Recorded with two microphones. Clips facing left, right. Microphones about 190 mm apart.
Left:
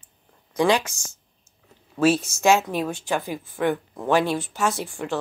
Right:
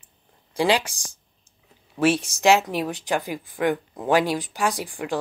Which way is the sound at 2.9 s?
15° right (ahead or behind).